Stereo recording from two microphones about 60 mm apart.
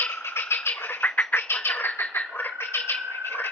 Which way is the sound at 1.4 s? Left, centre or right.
Left.